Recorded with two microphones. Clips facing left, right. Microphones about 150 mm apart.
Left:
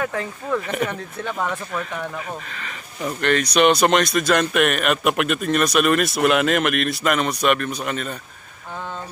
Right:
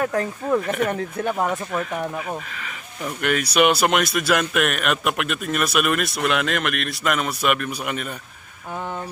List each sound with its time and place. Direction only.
0.0 s speech: 40° right (ahead or behind)
0.6 s speech: centre (ahead or behind)